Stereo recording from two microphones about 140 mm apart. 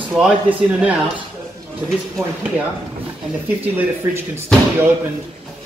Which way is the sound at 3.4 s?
10° right (ahead or behind).